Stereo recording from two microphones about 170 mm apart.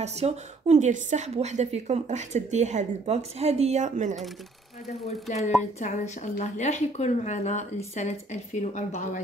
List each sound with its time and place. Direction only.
0.0 s a woman's voice: 40° right (ahead or behind)
5.8 s a woman's voice: 45° left (ahead or behind)